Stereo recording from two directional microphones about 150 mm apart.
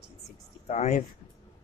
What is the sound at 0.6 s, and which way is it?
Speech, 50° left (ahead or behind).